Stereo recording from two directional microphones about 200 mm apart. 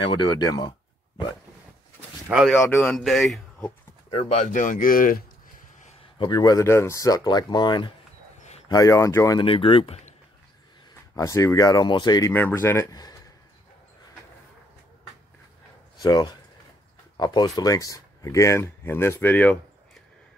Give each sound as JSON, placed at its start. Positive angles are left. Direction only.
{"t": 0.0, "sound": "speech", "side_deg": 20}
{"t": 2.2, "sound": "speech", "side_deg": -5}
{"t": 2.5, "sound": "speech", "side_deg": 10}
{"t": 4.1, "sound": "speech", "side_deg": 30}
{"t": 6.1, "sound": "speech", "side_deg": 20}
{"t": 8.4, "sound": "a sound", "side_deg": 35}
{"t": 8.6, "sound": "speech", "side_deg": 15}
{"t": 11.1, "sound": "speech", "side_deg": 15}
{"t": 16.0, "sound": "speech", "side_deg": 20}